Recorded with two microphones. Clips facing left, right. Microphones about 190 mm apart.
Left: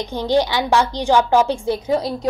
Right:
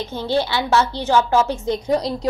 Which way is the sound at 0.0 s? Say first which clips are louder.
Left 3 dB; 15° left (ahead or behind).